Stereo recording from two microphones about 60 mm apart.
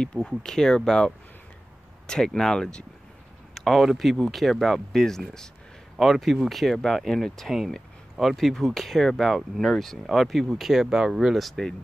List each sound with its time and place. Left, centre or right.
0.0 s speech: centre